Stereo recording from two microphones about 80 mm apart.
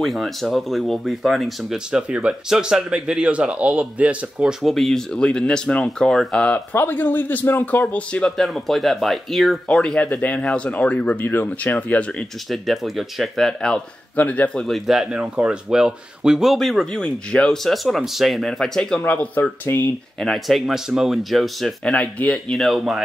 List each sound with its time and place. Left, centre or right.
0.0 s speech: centre
6.7 s speech: left
8.5 s speech: centre
12.4 s speech: centre
14.1 s speech: centre
14.7 s speech: centre
17.8 s speech: centre; by 19.8 s left
20.2 s speech: centre
21.9 s speech: centre
22.5 s speech: centre